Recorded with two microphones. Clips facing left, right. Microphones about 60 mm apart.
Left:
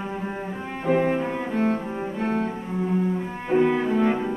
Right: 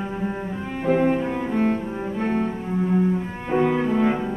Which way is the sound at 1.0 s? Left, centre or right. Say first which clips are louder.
Right 2 dB; centre.